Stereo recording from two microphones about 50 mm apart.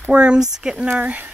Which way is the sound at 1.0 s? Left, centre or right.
Right.